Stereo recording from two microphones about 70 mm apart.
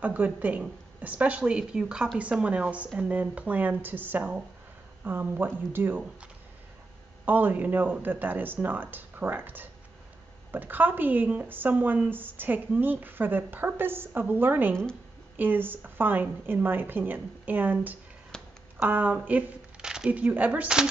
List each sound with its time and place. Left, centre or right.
0.0 s a woman's voice: right
7.2 s a woman's voice: right
18.3 s a sound: centre
18.8 s a woman's voice: right
19.8 s a sound: centre
20.1 s a woman's voice: right